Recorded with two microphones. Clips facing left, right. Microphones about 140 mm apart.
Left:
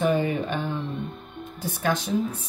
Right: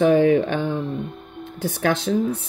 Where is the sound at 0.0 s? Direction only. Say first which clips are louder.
Right 8 dB; 80° right.